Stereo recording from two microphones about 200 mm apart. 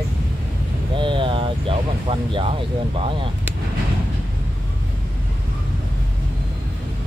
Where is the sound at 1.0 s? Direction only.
25° right (ahead or behind).